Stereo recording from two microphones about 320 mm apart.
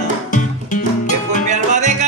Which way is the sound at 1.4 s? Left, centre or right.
Right.